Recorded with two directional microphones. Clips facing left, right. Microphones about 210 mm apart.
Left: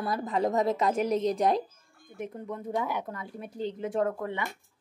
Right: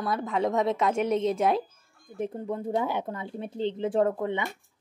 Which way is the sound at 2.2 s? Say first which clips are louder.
Right 5 dB; 30° right (ahead or behind).